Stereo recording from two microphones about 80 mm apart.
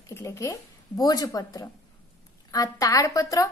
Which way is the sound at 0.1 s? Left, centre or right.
Left.